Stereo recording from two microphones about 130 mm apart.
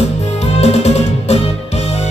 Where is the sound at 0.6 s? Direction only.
55° left (ahead or behind).